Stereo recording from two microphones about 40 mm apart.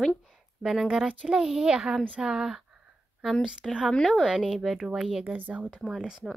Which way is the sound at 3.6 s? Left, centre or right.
Centre.